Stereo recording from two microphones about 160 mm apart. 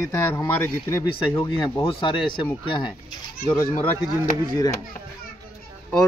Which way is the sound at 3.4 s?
20° left (ahead or behind).